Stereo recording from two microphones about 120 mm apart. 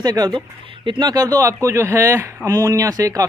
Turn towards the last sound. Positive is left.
turn(degrees=-30)  # may be behind; listen again after turning